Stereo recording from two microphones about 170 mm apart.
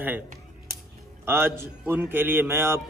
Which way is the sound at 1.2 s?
15° right (ahead or behind).